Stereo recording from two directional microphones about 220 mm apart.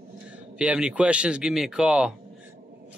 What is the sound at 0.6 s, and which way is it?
Speech, 5° right (ahead or behind).